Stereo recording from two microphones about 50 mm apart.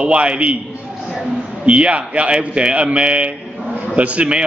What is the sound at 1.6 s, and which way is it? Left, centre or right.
A man's voice, right.